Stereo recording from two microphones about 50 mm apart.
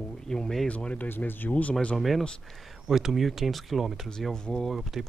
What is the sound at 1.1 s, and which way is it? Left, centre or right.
Speech, left.